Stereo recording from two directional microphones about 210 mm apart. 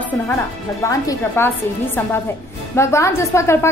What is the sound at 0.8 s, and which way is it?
Speech, 15° left (ahead or behind).